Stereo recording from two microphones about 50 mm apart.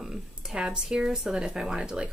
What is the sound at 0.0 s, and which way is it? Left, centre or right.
A woman's voice, centre.